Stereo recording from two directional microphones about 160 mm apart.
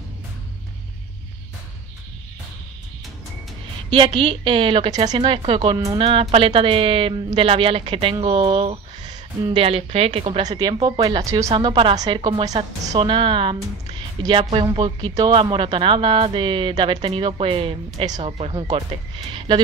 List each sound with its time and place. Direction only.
3.9 s a woman's voice: 30° right (ahead or behind)
11.5 s a woman's voice: 30° right (ahead or behind)
12.5 s a woman's voice: 45° right (ahead or behind)
13.0 s a woman's voice: 30° right (ahead or behind)